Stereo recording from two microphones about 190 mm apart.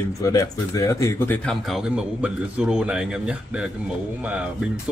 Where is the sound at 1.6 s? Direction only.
Centre (ahead or behind).